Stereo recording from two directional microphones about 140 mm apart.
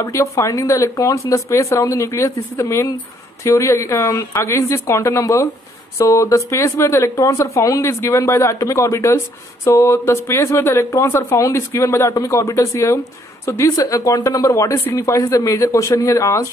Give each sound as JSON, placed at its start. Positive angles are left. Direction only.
{"t": 0.0, "sound": "speech", "side_deg": 20}